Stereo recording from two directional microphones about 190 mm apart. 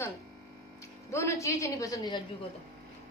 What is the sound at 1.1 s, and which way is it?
A woman's voice, 15° left (ahead or behind).